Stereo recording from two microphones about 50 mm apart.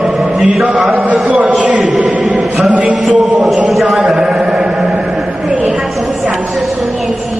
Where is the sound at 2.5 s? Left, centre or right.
Right.